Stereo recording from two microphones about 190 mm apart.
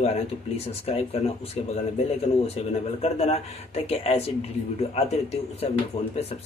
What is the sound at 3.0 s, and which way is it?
Speech, 35° left (ahead or behind).